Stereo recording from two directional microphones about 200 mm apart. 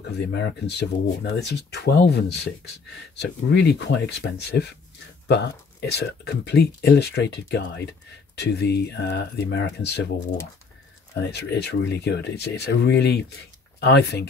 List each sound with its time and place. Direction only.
0.3 s speech: 55° left (ahead or behind)
11.1 s speech: 55° left (ahead or behind)